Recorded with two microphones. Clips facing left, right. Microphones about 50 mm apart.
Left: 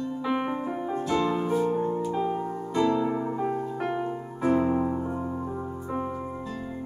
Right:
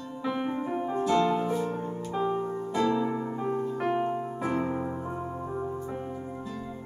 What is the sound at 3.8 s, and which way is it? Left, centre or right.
Music, centre.